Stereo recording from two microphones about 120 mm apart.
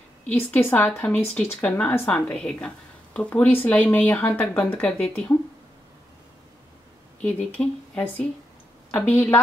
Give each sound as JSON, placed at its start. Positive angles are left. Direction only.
{"t": 0.3, "sound": "a woman's voice", "side_deg": 15}
{"t": 7.2, "sound": "a woman's voice", "side_deg": 10}